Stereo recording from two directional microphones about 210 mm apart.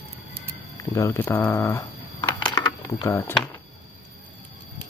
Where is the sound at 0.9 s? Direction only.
15° left (ahead or behind).